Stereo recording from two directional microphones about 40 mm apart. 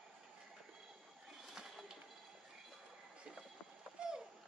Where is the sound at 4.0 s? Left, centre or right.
Centre.